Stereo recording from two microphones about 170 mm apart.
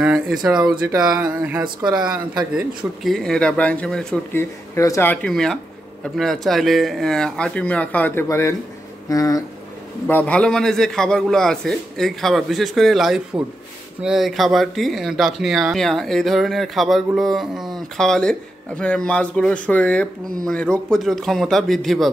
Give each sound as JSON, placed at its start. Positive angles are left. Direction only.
{"t": 0.0, "sound": "a sound", "side_deg": -5}
{"t": 0.9, "sound": "speech", "side_deg": -5}
{"t": 10.0, "sound": "speech", "side_deg": 10}